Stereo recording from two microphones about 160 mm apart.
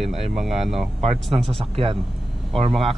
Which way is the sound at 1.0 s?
40° right (ahead or behind).